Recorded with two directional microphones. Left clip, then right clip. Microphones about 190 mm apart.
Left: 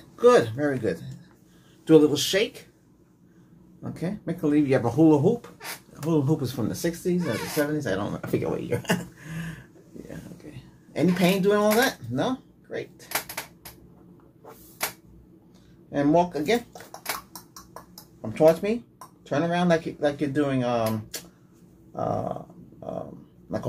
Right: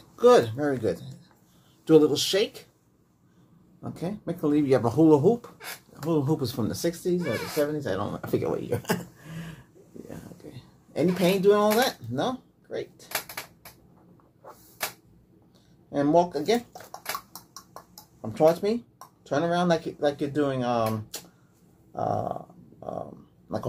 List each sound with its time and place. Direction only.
0.1 s speech: 20° right (ahead or behind)
3.8 s speech: 15° right (ahead or behind)
7.2 s speech: 5° right (ahead or behind)
10.9 s speech: 15° right (ahead or behind)
15.9 s speech: 15° right (ahead or behind)
18.3 s speech: 15° right (ahead or behind)
21.9 s a sound: 15° right (ahead or behind)